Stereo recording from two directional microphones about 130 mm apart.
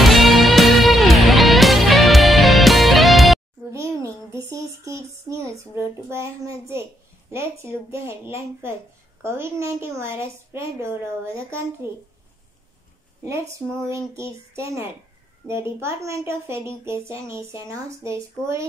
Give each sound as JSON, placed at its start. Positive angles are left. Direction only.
{"t": 0.0, "sound": "music", "side_deg": 0}
{"t": 3.7, "sound": "a sound", "side_deg": -25}
{"t": 6.0, "sound": "speech", "side_deg": -20}
{"t": 13.8, "sound": "speech", "side_deg": -20}